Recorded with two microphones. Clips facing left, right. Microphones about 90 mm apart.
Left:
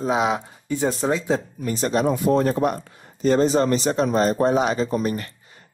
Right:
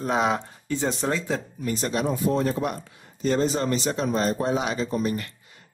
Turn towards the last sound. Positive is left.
turn(degrees=45)  # may be behind; listen again after turning